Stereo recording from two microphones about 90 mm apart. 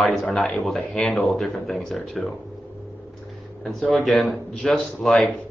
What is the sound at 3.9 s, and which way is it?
Speech, centre (ahead or behind).